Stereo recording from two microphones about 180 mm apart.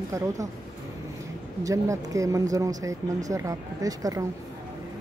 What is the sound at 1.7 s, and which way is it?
Speech, 20° right (ahead or behind).